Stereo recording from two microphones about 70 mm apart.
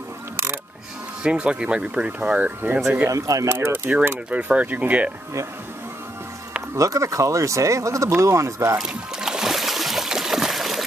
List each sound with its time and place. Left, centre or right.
1.2 s speech: centre
3.1 s speech: right
3.4 s speech: right
4.3 s speech: centre
6.8 s speech: right
8.8 s music: centre